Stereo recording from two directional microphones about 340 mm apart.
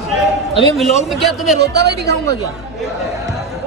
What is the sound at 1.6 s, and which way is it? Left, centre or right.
Speech, right.